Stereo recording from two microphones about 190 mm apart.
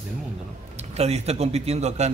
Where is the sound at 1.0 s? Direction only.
35° right (ahead or behind).